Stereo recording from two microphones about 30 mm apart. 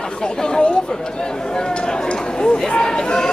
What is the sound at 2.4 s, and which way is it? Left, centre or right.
Speech, left.